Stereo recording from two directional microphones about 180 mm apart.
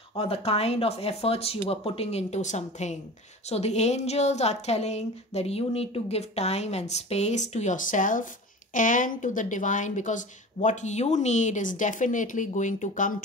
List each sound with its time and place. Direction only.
0.2 s a woman's voice: 35° left (ahead or behind)